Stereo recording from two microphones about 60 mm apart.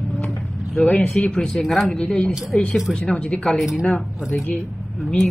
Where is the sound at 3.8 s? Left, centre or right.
Centre.